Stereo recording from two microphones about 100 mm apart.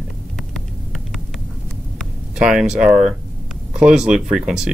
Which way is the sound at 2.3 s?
5° right (ahead or behind).